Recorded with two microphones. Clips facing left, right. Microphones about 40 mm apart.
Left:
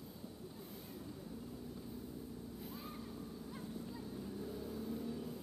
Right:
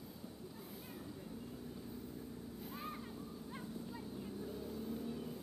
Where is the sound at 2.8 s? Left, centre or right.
Right.